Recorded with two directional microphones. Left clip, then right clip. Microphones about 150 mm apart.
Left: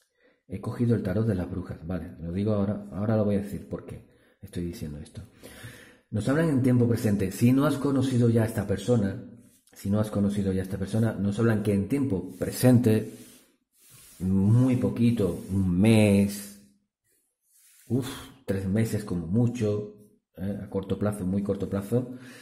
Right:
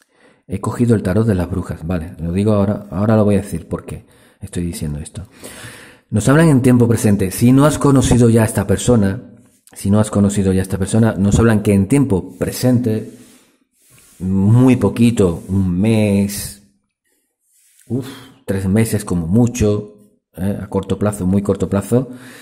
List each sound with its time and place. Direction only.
0.6 s speech: 40° right (ahead or behind)
6.1 s speech: 40° right (ahead or behind)
7.8 s a man's voice: 45° right (ahead or behind)
8.4 s speech: 30° right (ahead or behind)
8.7 s a man's voice: 45° right (ahead or behind)
12.6 s mantra: 5° left (ahead or behind)
14.2 s speech: 10° right (ahead or behind)
14.5 s speech: 40° right (ahead or behind)
15.5 s speech: 10° right (ahead or behind)
15.8 s mantra: centre (ahead or behind)
17.8 s a sound: centre (ahead or behind)
18.7 s speech: 30° right (ahead or behind)
20.9 s speech: 25° right (ahead or behind)
21.3 s speech: 40° right (ahead or behind)